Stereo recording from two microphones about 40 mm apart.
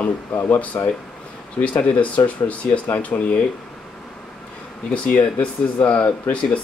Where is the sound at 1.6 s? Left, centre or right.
Left.